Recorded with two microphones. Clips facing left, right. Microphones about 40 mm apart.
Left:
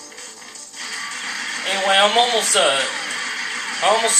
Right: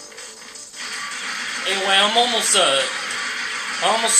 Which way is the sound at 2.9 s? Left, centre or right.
Centre.